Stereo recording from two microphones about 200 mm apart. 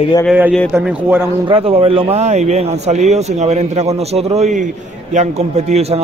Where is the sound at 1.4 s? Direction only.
30° right (ahead or behind).